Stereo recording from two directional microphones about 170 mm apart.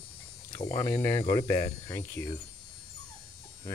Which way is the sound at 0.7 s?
15° left (ahead or behind).